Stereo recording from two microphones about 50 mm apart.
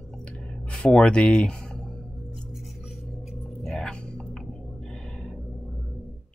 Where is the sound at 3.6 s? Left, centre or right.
Centre.